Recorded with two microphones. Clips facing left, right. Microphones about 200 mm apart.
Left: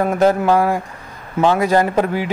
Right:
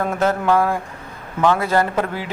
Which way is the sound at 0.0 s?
15° left (ahead or behind).